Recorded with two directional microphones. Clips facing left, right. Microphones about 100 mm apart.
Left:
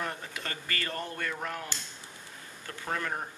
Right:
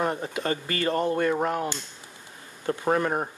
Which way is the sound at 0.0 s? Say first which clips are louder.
Right 10 dB; 25° right (ahead or behind).